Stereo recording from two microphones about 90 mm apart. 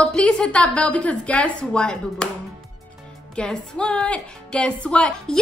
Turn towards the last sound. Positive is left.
turn(degrees=10)  # may be behind; listen again after turning